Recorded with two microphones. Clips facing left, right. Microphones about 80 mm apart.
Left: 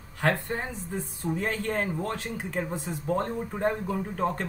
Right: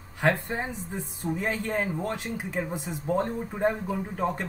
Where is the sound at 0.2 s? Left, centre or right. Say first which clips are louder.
Right 1 dB; centre.